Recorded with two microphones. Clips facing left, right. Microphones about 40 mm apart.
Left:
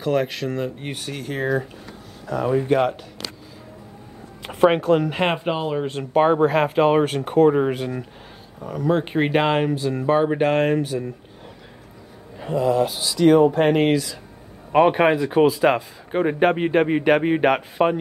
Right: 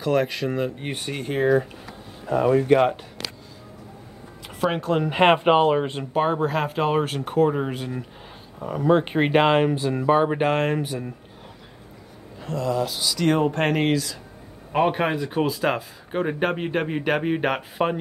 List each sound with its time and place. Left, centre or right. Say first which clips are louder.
0.0 s speech: even; centre
2.3 s speech: right 3 dB; right
2.7 s speech: right 1 dB; centre
4.5 s speech: left 8 dB; centre
4.8 s speech: left 5 dB; centre
5.1 s speech: right 5 dB; right
6.1 s speech: left 6 dB; centre
8.5 s speech: right 2 dB; centre
12.4 s speech: left 5 dB; centre